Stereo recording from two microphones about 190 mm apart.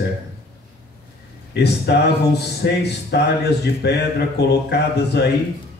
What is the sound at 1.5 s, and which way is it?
A man's voice, 60° left (ahead or behind).